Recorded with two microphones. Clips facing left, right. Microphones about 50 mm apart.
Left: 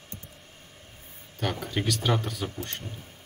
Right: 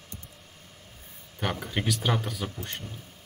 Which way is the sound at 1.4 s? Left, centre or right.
Centre.